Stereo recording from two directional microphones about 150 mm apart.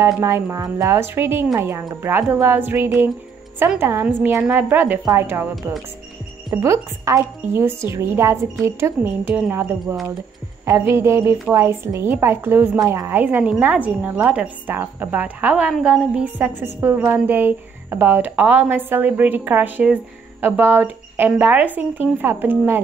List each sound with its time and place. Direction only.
0.0 s a woman's voice: 20° right (ahead or behind)
6.5 s a woman's voice: 20° right (ahead or behind)